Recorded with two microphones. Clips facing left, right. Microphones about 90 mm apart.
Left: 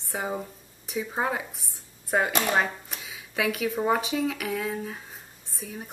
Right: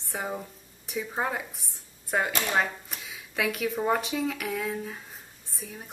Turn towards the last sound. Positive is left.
turn(degrees=0)  # may be behind; listen again after turning